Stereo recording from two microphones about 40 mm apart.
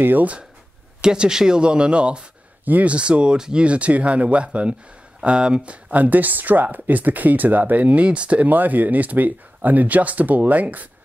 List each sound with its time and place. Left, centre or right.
1.0 s speech: centre
2.6 s speech: right
2.9 s speech: right
3.6 s speech: right
5.9 s speech: right
8.5 s speech: right